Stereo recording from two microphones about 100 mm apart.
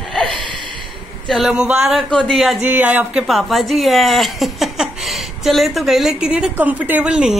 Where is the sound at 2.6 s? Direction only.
20° right (ahead or behind).